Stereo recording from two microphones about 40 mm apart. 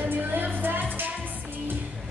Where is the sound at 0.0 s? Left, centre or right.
Right.